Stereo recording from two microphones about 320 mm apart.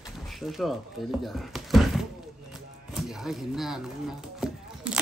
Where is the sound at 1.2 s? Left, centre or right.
Centre.